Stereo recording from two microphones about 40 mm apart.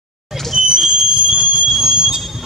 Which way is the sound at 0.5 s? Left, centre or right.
Centre.